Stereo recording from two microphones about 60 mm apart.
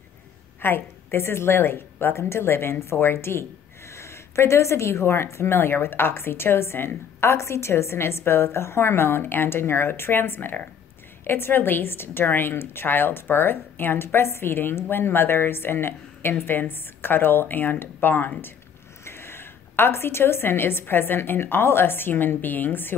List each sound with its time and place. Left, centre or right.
0.6 s a woman's voice: left